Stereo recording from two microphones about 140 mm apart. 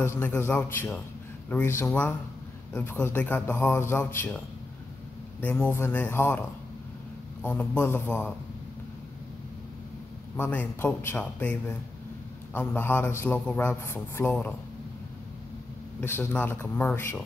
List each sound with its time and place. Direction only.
0.0 s a man's voice: 15° left (ahead or behind)
5.4 s a man's voice: 15° left (ahead or behind)
7.4 s a man's voice: 15° left (ahead or behind)
10.3 s a man's voice: 10° left (ahead or behind)
16.0 s a man's voice: 15° left (ahead or behind)